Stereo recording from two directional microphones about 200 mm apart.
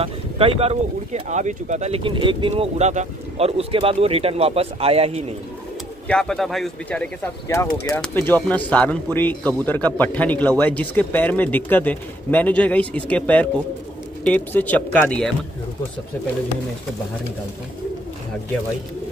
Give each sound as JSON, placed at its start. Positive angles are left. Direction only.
{"t": 0.0, "sound": "speech", "side_deg": -30}
{"t": 6.0, "sound": "a man's voice", "side_deg": 5}